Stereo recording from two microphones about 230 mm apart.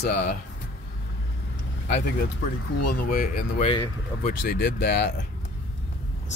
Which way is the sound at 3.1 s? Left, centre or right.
Left.